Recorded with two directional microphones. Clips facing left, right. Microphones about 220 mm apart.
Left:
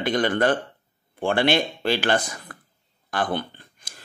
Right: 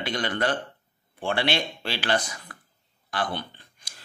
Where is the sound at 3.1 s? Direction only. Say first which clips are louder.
Left 4 dB; 50° left (ahead or behind).